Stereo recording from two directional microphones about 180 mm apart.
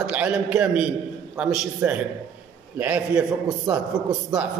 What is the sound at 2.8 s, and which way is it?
A man's voice, 5° right (ahead or behind).